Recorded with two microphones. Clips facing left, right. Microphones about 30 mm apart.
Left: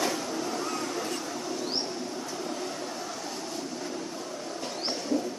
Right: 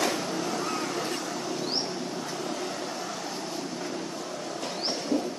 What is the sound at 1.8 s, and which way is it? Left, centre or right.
Vehicle, right.